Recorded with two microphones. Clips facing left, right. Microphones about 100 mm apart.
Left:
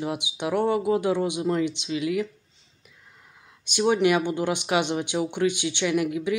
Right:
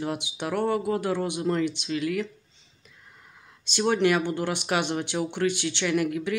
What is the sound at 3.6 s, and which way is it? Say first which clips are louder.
Speech: left 2 dB; 15° left (ahead or behind).